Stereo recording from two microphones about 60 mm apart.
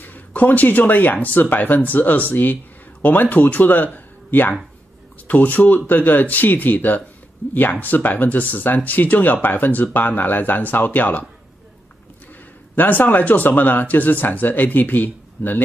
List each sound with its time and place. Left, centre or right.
0.0 s speech: left
12.7 s speech: left